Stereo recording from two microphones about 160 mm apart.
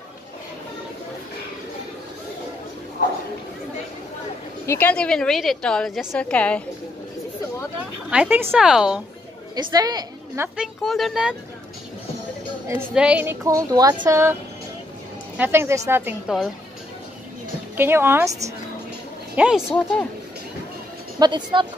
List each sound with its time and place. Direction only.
4.6 s a woman's voice: 10° left (ahead or behind)
8.1 s a woman's voice: 10° right (ahead or behind)
9.6 s a woman's voice: 25° right (ahead or behind)
10.5 s a woman's voice: 5° right (ahead or behind)
12.9 s a woman's voice: 5° right (ahead or behind)
15.3 s a woman's voice: 15° right (ahead or behind)
17.7 s a woman's voice: 15° right (ahead or behind)
19.3 s speech: 5° right (ahead or behind)
19.7 s a woman's voice: 5° left (ahead or behind)
21.2 s a woman's voice: 30° right (ahead or behind)